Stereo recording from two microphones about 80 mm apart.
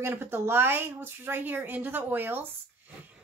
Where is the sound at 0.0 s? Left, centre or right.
Right.